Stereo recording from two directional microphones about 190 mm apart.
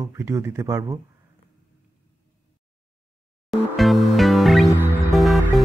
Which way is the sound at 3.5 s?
Centre (ahead or behind).